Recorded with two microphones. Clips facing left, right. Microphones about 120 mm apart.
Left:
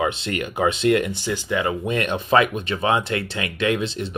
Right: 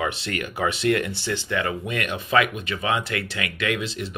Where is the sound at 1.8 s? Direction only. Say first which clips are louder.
Left 5 dB; 25° left (ahead or behind).